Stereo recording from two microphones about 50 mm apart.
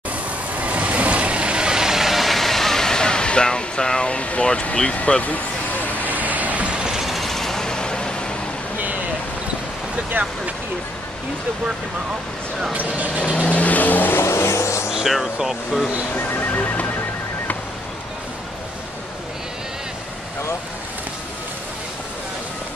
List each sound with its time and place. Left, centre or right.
0.6 s vehicle: right; by 5.4 s left
6.0 s vehicle: right; by 7.0 s centre
7.0 s vehicle: centre
10.2 s speech: right
12.7 s speech: right
13.4 s vehicle: left
14.2 s vehicle: left
14.9 s music: centre
16.2 s music: left